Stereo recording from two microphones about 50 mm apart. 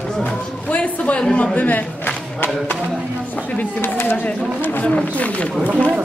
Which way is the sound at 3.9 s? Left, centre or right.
Left.